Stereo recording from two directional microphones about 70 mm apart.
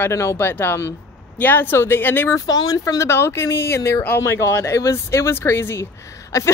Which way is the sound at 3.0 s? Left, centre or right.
Left.